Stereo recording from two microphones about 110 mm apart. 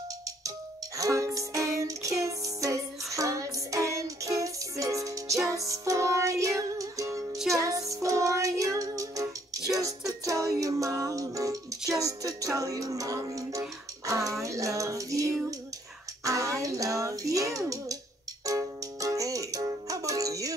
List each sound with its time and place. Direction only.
0.9 s music: 30° right (ahead or behind)
16.3 s a sound: 30° right (ahead or behind)
18.4 s music: 30° right (ahead or behind)